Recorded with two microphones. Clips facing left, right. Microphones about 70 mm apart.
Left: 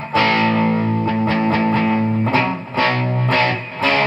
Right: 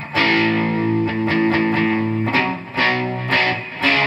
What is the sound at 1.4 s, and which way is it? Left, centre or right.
Music, right.